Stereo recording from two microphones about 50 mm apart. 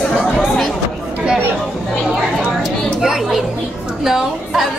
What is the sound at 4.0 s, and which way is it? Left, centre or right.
Speech, centre.